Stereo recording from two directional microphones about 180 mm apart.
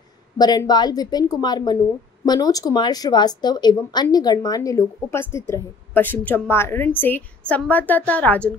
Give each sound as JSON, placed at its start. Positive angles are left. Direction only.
{"t": 0.4, "sound": "a woman's voice", "side_deg": 20}